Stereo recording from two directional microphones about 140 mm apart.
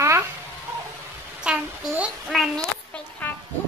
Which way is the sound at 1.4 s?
10° right (ahead or behind).